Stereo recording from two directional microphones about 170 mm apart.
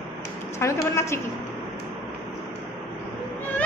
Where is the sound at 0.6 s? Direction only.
15° left (ahead or behind).